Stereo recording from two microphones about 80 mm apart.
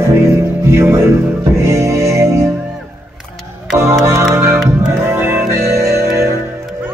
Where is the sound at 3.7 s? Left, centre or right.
Right.